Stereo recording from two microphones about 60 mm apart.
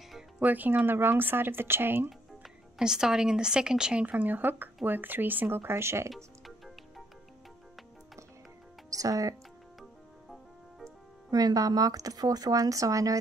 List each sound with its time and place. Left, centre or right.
0.4 s speech: right
2.8 s speech: centre
4.0 s speech: right
6.0 s music: centre
8.9 s speech: right
11.2 s speech: right